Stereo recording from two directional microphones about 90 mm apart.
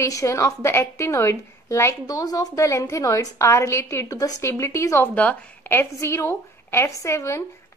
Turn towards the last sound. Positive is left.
turn(degrees=35)  # may be behind; listen again after turning